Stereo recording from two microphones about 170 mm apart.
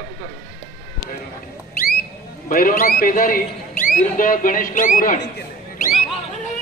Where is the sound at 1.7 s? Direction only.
60° left (ahead or behind).